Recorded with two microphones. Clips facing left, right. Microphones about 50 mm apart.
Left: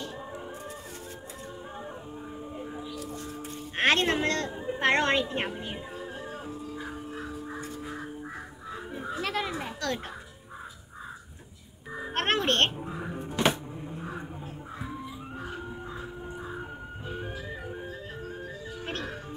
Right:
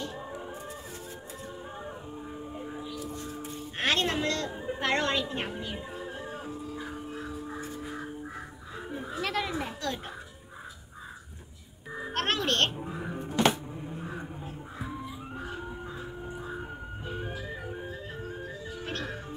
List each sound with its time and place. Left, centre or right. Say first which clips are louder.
3.4 s music: left 5 dB; left
5.2 s speech: left 3 dB; left
5.9 s music: even; centre
8.9 s a sound: even; centre
12.1 s music: left 2 dB; left
12.7 s music: even; centre
17.3 s music: even; centre